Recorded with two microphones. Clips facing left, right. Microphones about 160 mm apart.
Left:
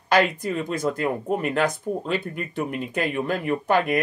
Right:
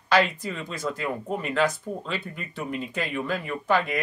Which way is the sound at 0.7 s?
15° left (ahead or behind).